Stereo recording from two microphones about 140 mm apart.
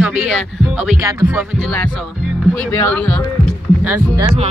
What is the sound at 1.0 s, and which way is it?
Speech, 20° right (ahead or behind).